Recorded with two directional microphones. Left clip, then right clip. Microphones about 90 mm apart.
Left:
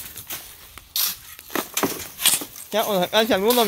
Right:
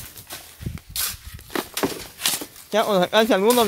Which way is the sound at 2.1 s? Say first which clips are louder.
Left 6 dB; 55° left (ahead or behind).